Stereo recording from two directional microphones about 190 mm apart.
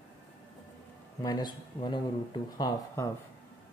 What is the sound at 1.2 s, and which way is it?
A man's voice, 20° left (ahead or behind).